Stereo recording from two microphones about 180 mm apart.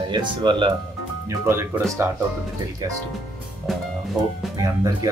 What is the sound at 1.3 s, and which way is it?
Speech, 15° right (ahead or behind).